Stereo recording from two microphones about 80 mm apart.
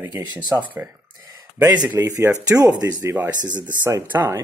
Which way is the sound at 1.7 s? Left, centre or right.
Right.